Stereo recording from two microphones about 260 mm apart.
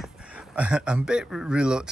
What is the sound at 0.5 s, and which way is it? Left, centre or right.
A man's voice, centre.